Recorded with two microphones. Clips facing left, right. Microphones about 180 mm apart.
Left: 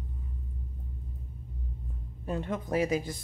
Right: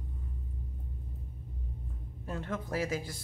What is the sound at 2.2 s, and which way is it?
Speech, 20° left (ahead or behind).